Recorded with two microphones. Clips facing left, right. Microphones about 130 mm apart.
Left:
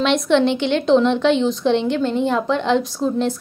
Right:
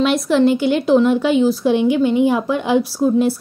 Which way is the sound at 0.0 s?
5° right (ahead or behind).